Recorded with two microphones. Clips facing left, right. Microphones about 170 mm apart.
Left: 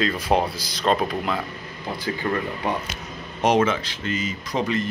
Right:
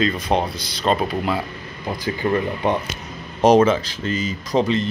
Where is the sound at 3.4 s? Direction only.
35° right (ahead or behind).